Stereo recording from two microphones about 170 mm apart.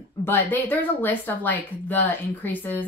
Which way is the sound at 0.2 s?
10° left (ahead or behind).